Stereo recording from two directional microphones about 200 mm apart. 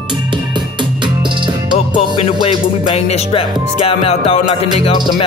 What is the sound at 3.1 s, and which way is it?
Speech, 30° left (ahead or behind).